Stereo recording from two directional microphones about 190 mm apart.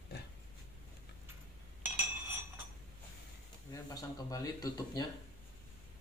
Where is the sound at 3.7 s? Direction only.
20° left (ahead or behind).